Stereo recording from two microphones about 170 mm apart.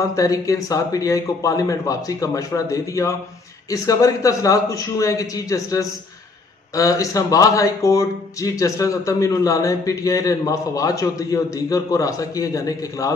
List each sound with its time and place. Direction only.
0.1 s speech: 20° left (ahead or behind)